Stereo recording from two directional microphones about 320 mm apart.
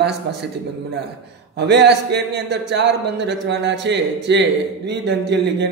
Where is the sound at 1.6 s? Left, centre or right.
Right.